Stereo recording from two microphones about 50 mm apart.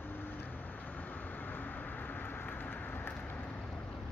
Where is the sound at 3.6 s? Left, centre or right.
Left.